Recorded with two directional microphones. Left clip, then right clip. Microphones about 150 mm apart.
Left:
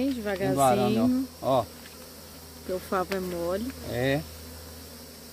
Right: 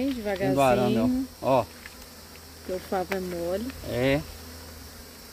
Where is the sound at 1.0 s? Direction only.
20° right (ahead or behind).